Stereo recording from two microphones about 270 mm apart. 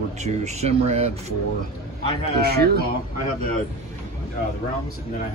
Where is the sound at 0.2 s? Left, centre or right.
Right.